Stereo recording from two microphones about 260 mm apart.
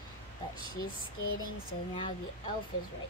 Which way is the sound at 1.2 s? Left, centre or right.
Left.